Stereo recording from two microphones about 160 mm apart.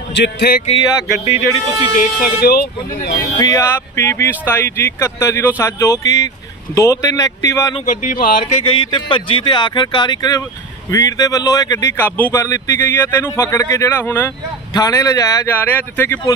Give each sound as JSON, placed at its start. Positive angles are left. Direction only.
{"t": 0.1, "sound": "a man's voice", "side_deg": 85}
{"t": 0.7, "sound": "speech", "side_deg": 35}
{"t": 2.0, "sound": "speech", "side_deg": 70}
{"t": 3.3, "sound": "speech", "side_deg": 20}
{"t": 7.8, "sound": "speech", "side_deg": 55}
{"t": 8.6, "sound": "speech", "side_deg": 30}